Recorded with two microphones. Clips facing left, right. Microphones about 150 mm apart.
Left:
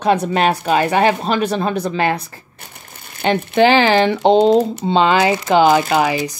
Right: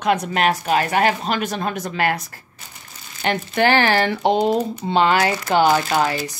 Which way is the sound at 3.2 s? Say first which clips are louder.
Left 5 dB; 25° left (ahead or behind).